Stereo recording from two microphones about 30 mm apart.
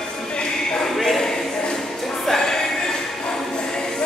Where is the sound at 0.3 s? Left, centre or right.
Left.